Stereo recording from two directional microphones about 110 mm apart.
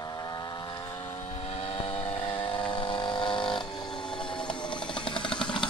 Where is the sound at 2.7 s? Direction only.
45° left (ahead or behind).